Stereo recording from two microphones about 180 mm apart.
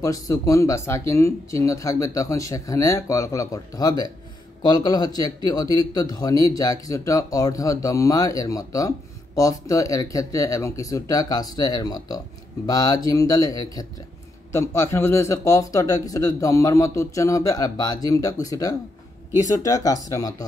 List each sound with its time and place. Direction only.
0.0 s speech: 20° left (ahead or behind)